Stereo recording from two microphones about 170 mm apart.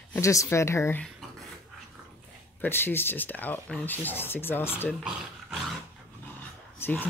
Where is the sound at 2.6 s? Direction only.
10° left (ahead or behind).